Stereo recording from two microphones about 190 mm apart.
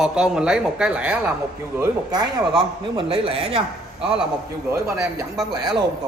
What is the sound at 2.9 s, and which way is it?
Speech, 30° right (ahead or behind).